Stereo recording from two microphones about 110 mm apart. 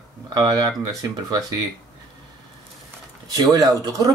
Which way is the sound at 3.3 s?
35° right (ahead or behind).